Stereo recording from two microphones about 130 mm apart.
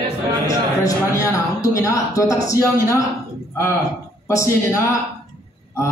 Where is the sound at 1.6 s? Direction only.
25° left (ahead or behind).